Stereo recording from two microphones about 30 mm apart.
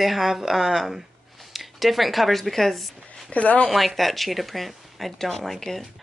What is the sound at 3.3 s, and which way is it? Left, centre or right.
Speech, left.